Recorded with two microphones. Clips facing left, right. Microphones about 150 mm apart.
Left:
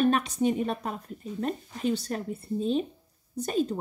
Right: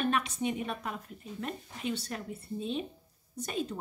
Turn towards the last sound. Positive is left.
turn(degrees=40)  # may be behind; listen again after turning